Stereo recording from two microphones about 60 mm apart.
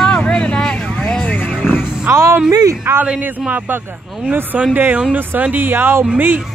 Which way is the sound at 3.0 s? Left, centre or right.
Right.